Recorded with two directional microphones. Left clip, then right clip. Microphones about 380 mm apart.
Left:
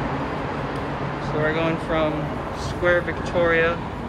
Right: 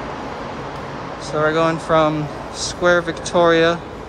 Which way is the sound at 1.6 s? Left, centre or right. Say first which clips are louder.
Right 7 dB; centre.